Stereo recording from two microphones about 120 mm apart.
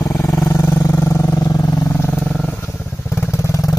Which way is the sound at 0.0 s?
25° left (ahead or behind).